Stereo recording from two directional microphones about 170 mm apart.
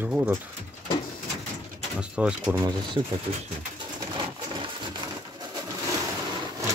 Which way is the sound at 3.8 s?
25° right (ahead or behind).